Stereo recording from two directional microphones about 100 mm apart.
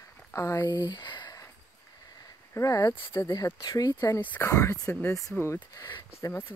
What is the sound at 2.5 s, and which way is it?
Speech, 35° left (ahead or behind).